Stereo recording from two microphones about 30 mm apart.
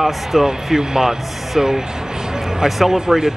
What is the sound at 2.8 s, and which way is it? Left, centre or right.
Speech, centre.